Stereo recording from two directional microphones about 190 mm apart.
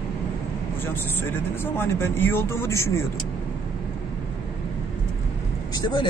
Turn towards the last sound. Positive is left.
turn(degrees=25)  # may be behind; listen again after turning